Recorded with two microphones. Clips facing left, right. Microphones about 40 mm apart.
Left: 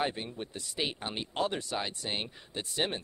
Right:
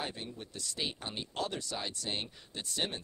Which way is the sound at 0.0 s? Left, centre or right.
Left.